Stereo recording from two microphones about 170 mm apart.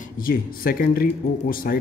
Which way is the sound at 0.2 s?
60° left (ahead or behind).